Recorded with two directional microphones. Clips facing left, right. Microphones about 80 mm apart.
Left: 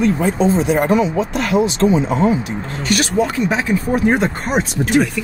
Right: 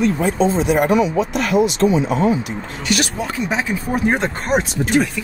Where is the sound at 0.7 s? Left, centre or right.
Left.